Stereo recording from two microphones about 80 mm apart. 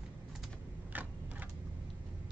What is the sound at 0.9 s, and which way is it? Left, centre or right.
Typewriter, right.